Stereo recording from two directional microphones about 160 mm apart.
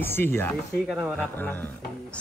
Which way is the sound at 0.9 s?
5° right (ahead or behind).